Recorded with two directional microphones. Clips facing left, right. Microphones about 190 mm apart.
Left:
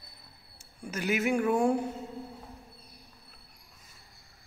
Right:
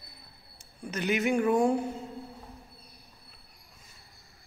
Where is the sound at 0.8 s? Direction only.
5° left (ahead or behind).